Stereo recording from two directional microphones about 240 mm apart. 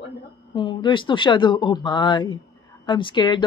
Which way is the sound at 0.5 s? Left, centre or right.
Centre.